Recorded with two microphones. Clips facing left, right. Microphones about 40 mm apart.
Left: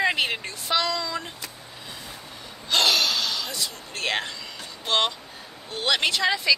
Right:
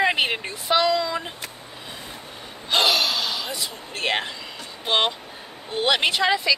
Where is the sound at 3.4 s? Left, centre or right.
Right.